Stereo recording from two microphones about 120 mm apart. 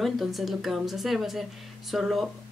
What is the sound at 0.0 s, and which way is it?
Speech, centre (ahead or behind).